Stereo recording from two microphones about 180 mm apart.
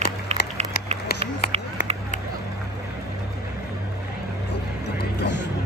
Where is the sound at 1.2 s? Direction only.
35° right (ahead or behind).